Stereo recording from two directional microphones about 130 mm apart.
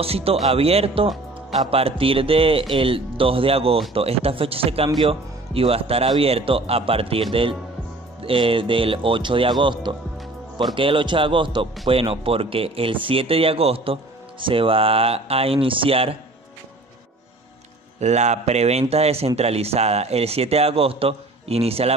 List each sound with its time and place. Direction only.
0.0 s speech: 50° right (ahead or behind)
18.0 s speech: 60° right (ahead or behind)